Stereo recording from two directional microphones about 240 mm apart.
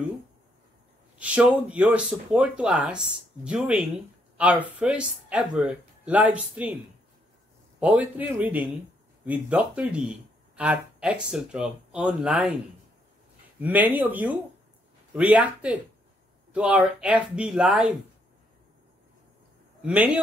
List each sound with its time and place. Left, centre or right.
1.1 s speech: centre
7.8 s a man's voice: centre
13.6 s a man's voice: centre
19.8 s speech: centre